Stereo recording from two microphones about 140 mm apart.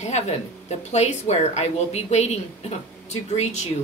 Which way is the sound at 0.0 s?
50° left (ahead or behind).